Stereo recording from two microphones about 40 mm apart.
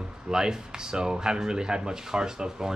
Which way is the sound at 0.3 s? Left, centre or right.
Centre.